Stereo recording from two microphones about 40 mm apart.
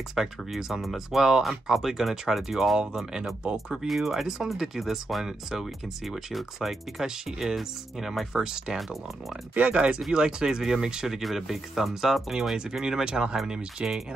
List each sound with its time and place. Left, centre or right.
0.1 s speech: centre
6.0 s speech: centre
9.6 s speech: right
10.1 s speech: centre
12.8 s speech: centre